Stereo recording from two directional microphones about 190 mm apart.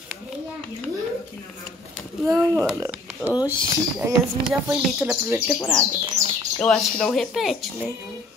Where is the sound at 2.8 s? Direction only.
10° right (ahead or behind).